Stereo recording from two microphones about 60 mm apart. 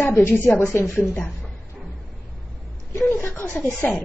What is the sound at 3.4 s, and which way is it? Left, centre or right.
Speech, left.